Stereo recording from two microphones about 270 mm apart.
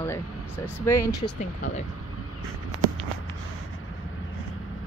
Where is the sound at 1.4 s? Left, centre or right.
Left.